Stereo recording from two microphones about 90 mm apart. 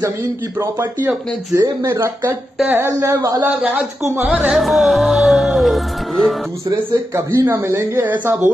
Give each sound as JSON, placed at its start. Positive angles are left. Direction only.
{"t": 0.6, "sound": "a man's voice", "side_deg": -30}
{"t": 4.3, "sound": "music", "side_deg": -5}
{"t": 6.9, "sound": "speech", "side_deg": -30}